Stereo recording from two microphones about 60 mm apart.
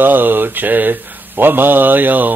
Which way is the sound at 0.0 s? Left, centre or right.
Right.